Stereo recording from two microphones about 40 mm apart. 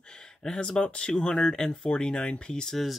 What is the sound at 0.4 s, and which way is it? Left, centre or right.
Speech, left.